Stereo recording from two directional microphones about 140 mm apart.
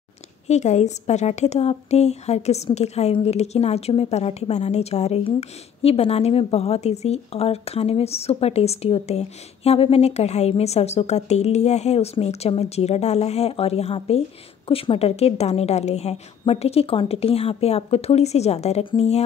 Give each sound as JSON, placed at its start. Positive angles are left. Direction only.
{"t": 0.5, "sound": "a woman's voice", "side_deg": 55}